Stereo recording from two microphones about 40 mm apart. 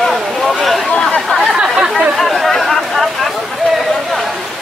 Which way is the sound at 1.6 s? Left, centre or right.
Right.